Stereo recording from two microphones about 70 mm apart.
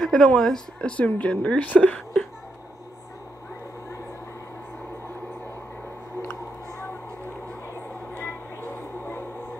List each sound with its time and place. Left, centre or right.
0.0 s speech: centre
0.8 s a woman's voice: left
8.1 s music: left